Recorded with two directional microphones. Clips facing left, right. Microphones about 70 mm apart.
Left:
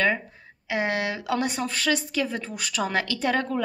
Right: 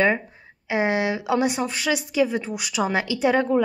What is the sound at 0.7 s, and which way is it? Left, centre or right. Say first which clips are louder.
Speech: right 4 dB; right.